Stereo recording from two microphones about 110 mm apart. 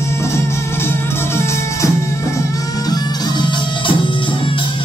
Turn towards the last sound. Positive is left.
turn(degrees=45)  # may be behind; listen again after turning